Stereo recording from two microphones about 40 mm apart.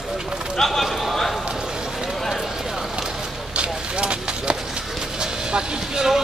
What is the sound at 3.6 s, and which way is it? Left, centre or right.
Clip-clop, right.